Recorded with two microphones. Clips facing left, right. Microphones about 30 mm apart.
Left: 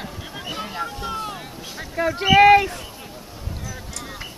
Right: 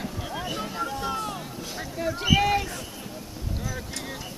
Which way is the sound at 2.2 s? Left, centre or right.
Left.